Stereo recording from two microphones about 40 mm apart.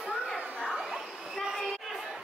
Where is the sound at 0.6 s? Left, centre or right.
Centre.